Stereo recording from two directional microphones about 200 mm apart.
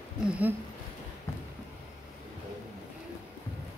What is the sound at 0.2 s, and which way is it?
Speech, 5° right (ahead or behind).